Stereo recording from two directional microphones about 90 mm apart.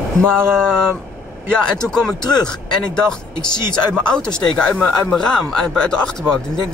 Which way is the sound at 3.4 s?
50° left (ahead or behind).